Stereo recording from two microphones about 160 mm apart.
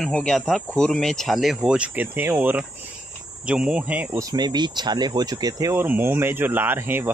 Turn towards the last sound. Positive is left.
turn(degrees=-15)  # may be behind; listen again after turning